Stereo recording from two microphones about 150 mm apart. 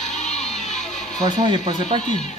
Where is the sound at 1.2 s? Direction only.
30° right (ahead or behind).